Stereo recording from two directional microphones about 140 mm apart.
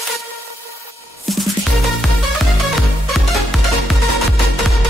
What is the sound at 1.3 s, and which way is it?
Music, centre (ahead or behind).